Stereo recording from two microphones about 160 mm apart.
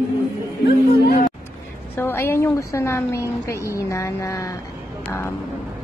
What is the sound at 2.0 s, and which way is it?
A woman's voice, 15° left (ahead or behind).